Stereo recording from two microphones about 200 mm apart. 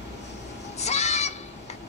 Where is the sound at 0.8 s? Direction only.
35° left (ahead or behind).